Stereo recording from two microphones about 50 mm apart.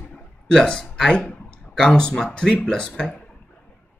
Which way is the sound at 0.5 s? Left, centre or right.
Centre.